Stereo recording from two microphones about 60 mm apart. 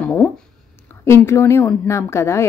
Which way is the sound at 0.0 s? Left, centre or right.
Left.